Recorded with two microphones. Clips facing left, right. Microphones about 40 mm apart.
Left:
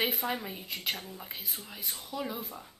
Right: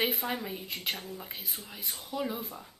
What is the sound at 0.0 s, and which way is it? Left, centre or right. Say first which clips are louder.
Speech: even; centre.